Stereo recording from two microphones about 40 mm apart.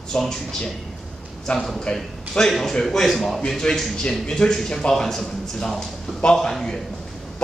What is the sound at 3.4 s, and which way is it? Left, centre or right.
A man's voice, centre.